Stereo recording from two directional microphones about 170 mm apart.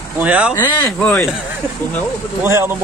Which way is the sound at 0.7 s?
25° left (ahead or behind).